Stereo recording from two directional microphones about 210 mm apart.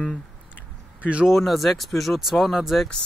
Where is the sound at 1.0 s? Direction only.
5° right (ahead or behind).